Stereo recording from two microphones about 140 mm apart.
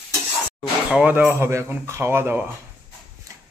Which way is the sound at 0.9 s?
10° right (ahead or behind).